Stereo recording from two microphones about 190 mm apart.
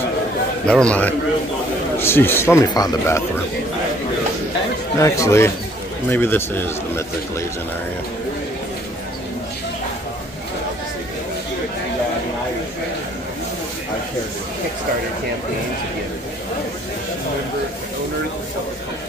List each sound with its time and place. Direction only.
0.7 s a man's voice: 5° left (ahead or behind)
4.9 s speech: 15° left (ahead or behind)